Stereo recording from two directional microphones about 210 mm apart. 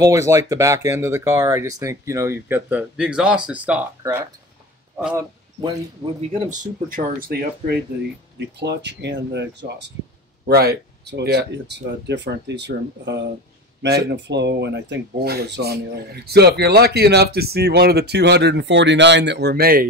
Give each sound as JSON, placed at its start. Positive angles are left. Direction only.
{"t": 0.0, "sound": "a man's voice", "side_deg": -15}
{"t": 6.6, "sound": "speech", "side_deg": -40}